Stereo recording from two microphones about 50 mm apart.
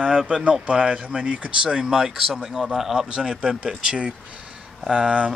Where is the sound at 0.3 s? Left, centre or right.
Centre.